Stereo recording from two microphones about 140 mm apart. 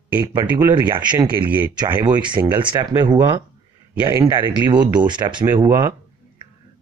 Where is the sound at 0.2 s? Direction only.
30° right (ahead or behind).